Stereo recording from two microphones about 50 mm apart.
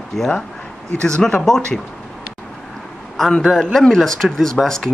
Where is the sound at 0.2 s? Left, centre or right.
Centre.